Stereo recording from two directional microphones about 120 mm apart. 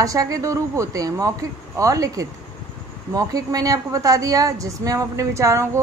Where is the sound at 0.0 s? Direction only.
30° right (ahead or behind).